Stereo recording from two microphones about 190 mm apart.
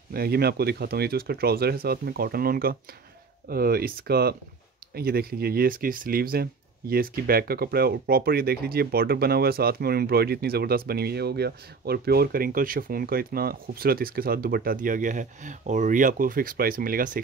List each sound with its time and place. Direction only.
0.1 s speech: 55° right (ahead or behind)